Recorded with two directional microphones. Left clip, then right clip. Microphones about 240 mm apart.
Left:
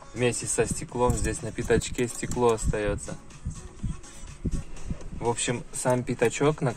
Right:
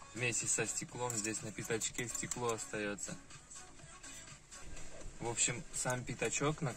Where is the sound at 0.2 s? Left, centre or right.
Left.